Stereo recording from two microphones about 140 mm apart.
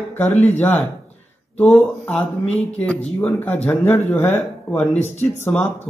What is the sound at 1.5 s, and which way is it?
Speech, 10° left (ahead or behind).